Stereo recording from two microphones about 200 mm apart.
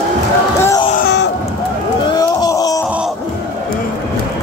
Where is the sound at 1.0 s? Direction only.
55° left (ahead or behind).